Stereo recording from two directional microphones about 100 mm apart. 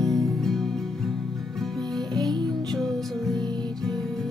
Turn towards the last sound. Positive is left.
turn(degrees=5)  # may be behind; listen again after turning